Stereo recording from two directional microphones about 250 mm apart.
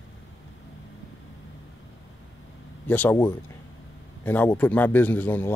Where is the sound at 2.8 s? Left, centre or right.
Centre.